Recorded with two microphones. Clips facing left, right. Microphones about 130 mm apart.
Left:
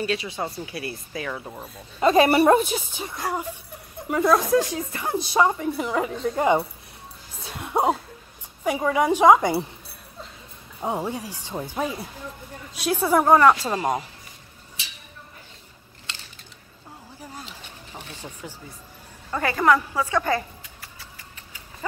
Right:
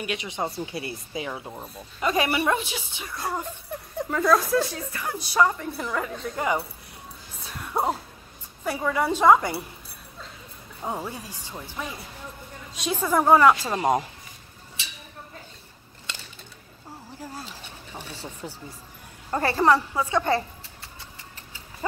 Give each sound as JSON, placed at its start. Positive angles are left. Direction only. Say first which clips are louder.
{"t": 0.0, "sound": "speech", "louder": "left 2 dB", "side_deg": -20}
{"t": 2.0, "sound": "a woman's voice", "louder": "left 7 dB", "side_deg": 35}
{"t": 4.1, "sound": "a woman's voice", "louder": "left 2 dB", "side_deg": 15}
{"t": 4.9, "sound": "a woman's voice", "louder": "left 2 dB", "side_deg": 25}
{"t": 7.4, "sound": "a sound", "louder": "left 3 dB", "side_deg": 25}
{"t": 8.6, "sound": "a woman's voice", "louder": "left 4 dB", "side_deg": 15}
{"t": 10.8, "sound": "a woman's voice", "louder": "left 5 dB", "side_deg": 15}
{"t": 11.6, "sound": "speech", "louder": "left 8 dB", "side_deg": 45}
{"t": 12.7, "sound": "a woman's voice", "louder": "left 3 dB", "side_deg": 5}
{"t": 13.3, "sound": "speech", "louder": "right 1 dB", "side_deg": -10}
{"t": 18.4, "sound": "speech", "louder": "right 2 dB", "side_deg": 0}
{"t": 19.3, "sound": "speech", "louder": "even", "side_deg": -30}
{"t": 20.0, "sound": "a sound", "louder": "even", "side_deg": -25}